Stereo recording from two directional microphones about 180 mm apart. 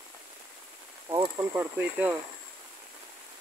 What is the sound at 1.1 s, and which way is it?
Speech, 20° right (ahead or behind).